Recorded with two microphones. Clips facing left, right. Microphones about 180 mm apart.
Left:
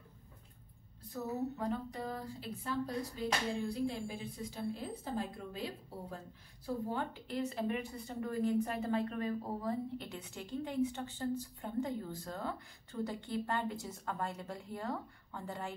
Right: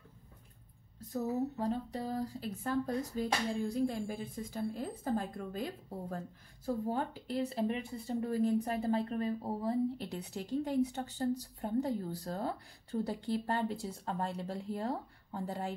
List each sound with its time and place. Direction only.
1.1 s speech: 35° right (ahead or behind)